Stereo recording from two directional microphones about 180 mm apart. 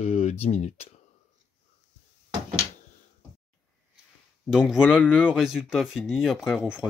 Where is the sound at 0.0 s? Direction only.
35° left (ahead or behind).